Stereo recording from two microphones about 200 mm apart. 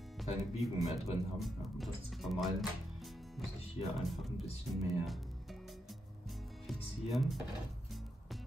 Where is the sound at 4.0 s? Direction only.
Centre (ahead or behind).